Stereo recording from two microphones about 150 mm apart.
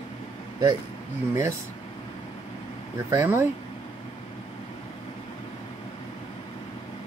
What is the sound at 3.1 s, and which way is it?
Speech, 15° right (ahead or behind).